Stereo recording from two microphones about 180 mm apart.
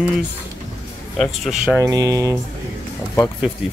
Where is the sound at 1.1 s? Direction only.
Centre (ahead or behind).